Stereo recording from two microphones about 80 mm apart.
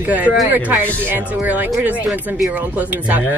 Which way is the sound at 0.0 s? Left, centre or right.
Centre.